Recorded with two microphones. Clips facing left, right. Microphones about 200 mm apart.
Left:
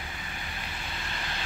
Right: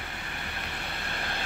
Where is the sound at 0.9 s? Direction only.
55° right (ahead or behind).